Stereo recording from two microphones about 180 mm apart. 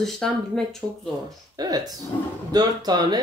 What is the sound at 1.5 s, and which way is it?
Speech, 20° right (ahead or behind).